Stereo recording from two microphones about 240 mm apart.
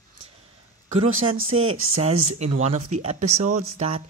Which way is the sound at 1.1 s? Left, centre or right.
Right.